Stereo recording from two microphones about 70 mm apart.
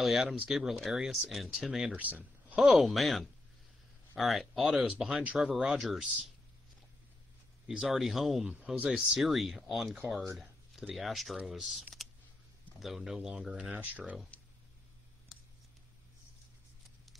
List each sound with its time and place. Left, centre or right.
0.0 s speech: centre
1.9 s speech: right
2.5 s speech: centre
4.6 s speech: centre
7.6 s speech: centre
8.5 s speech: centre
11.0 s speech: centre
12.8 s speech: centre
13.7 s speech: right